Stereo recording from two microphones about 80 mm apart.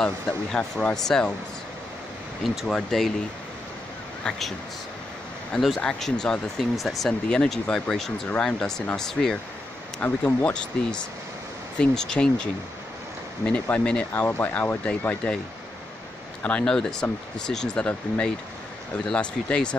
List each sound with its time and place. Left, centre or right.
0.0 s speech: centre
2.4 s speech: centre
4.2 s speech: centre
9.9 s speech: left
13.5 s speech: centre
16.4 s speech: centre